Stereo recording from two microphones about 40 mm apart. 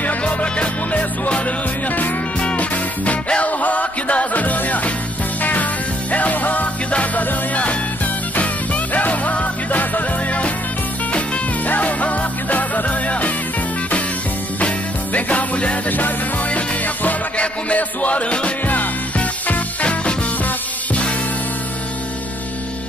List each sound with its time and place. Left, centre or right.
0.2 s music: left
8.4 s music: left
15.1 s music: left
19.8 s music: left